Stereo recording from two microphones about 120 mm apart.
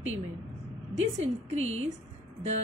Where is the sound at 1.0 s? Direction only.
65° right (ahead or behind).